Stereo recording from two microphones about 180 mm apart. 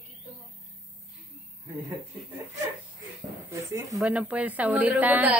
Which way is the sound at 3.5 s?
15° right (ahead or behind).